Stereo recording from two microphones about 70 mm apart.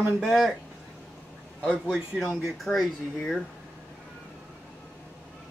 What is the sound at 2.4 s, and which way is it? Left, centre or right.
Speech, centre.